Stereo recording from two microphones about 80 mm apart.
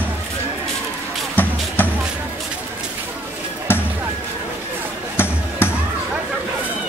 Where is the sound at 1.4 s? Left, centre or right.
Left.